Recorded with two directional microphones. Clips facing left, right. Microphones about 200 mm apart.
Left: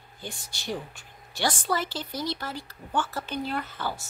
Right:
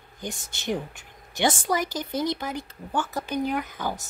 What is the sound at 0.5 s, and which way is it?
Speech, 20° right (ahead or behind).